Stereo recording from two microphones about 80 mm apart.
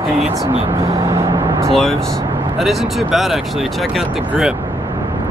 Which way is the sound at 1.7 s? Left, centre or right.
Centre.